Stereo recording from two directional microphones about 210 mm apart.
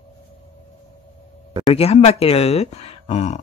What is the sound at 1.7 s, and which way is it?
Speech, 30° left (ahead or behind).